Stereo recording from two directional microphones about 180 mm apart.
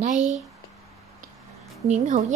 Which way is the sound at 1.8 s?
40° right (ahead or behind).